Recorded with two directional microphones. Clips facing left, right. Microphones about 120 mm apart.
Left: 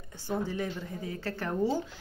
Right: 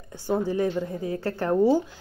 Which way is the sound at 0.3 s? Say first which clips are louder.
Right 8 dB; 45° right (ahead or behind).